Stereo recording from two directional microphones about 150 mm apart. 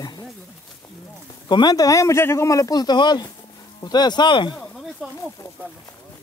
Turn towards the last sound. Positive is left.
turn(degrees=30)  # may be behind; listen again after turning